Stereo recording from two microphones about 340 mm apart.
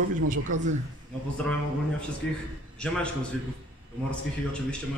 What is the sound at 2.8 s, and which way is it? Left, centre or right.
Speech, centre.